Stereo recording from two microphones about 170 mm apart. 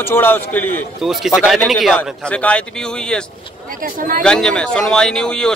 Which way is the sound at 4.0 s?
55° right (ahead or behind).